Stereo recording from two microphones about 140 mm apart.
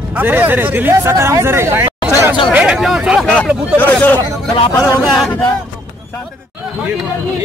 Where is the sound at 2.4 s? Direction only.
5° right (ahead or behind).